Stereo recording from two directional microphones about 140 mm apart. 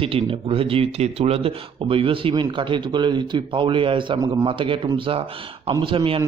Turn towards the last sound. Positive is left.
turn(degrees=-40)  # may be behind; listen again after turning